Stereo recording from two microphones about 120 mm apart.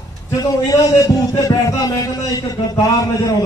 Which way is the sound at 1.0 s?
30° left (ahead or behind).